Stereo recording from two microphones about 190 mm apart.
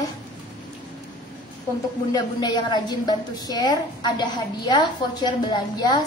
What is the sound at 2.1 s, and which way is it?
A woman's voice, 20° left (ahead or behind).